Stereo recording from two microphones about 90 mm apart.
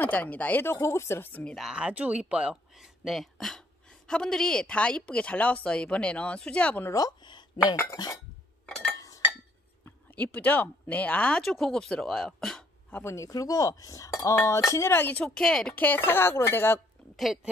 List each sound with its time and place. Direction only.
0.0 s speech: 20° left (ahead or behind)
1.4 s speech: centre (ahead or behind)
1.7 s speech: 10° right (ahead or behind); by 6.9 s 15° left (ahead or behind)
6.9 s speech: 40° left (ahead or behind)
7.2 s chink: 55° left (ahead or behind)
9.8 s speech: 15° left (ahead or behind)
13.0 s speech: 35° left (ahead or behind)
15.2 s speech: 5° left (ahead or behind)
15.7 s speech: 20° left (ahead or behind)
17.2 s speech: 5° right (ahead or behind)